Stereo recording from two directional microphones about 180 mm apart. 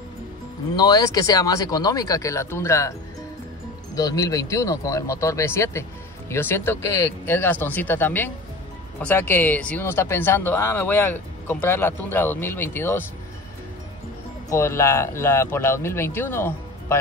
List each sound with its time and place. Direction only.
0.7 s speech: 20° left (ahead or behind)
3.9 s speech: 20° left (ahead or behind)
14.5 s speech: 15° left (ahead or behind)